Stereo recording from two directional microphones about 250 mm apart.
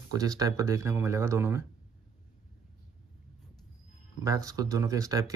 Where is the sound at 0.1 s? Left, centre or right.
Centre.